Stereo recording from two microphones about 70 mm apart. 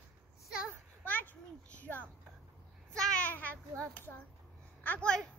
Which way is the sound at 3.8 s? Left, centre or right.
Left.